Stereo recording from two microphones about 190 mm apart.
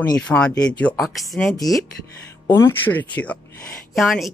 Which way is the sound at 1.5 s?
20° left (ahead or behind).